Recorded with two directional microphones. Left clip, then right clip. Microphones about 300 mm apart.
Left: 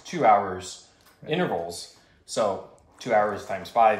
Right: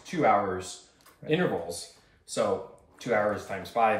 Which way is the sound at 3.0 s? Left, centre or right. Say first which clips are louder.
Left 4 dB; centre.